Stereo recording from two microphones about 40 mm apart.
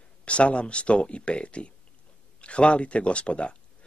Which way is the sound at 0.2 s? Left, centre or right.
Left.